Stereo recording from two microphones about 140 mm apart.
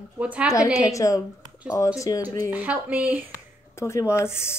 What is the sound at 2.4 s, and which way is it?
Speech, 10° right (ahead or behind).